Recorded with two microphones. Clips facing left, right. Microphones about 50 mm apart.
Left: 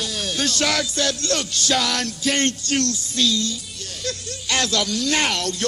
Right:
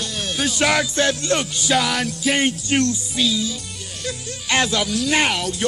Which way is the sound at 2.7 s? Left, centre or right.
Centre.